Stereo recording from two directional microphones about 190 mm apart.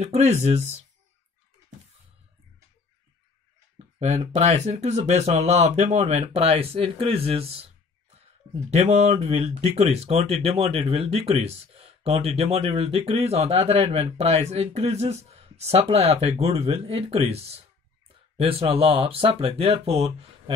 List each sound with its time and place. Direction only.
0.0 s speech: 35° right (ahead or behind)
4.0 s speech: 35° right (ahead or behind)
8.6 s speech: 35° right (ahead or behind)